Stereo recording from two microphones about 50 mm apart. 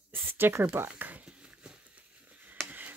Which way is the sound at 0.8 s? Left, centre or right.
Right.